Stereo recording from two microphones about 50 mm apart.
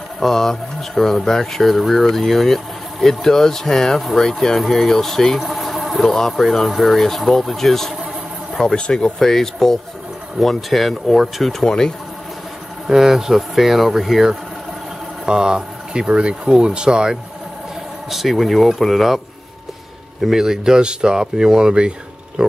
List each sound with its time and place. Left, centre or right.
0.2 s speech: centre
9.2 s speech: centre
11.6 s speech: centre
12.8 s speech: centre
15.2 s speech: centre
18.1 s speech: centre